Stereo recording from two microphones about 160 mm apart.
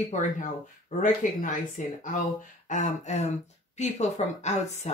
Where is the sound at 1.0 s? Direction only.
55° left (ahead or behind).